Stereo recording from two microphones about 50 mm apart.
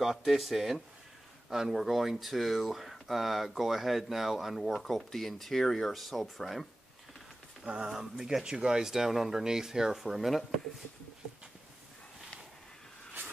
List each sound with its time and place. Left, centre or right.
0.0 s speech: centre
7.6 s speech: centre
8.0 s speech: centre